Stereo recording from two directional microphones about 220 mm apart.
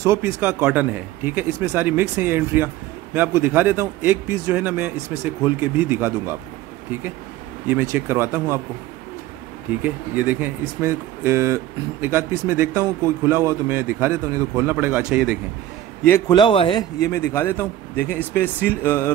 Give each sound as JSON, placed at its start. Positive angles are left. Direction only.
{"t": 0.0, "sound": "speech", "side_deg": -10}
{"t": 7.6, "sound": "speech", "side_deg": -10}
{"t": 9.8, "sound": "speech", "side_deg": -5}
{"t": 16.0, "sound": "a man's voice", "side_deg": 15}